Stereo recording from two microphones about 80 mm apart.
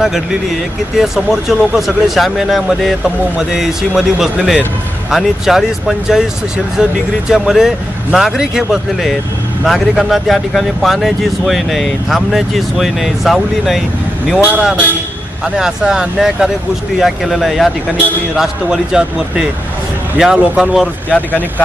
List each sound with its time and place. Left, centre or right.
0.0 s speech: centre
15.4 s a man's voice: centre
21.1 s speech: centre